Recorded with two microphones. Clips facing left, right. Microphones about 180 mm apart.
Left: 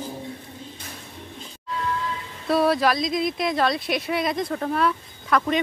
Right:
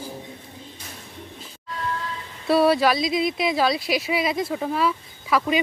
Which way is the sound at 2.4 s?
Centre (ahead or behind).